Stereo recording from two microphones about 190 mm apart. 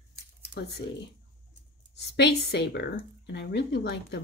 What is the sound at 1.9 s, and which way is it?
Speech, 60° left (ahead or behind).